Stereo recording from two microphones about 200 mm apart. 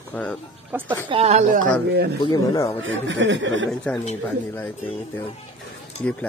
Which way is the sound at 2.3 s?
20° left (ahead or behind).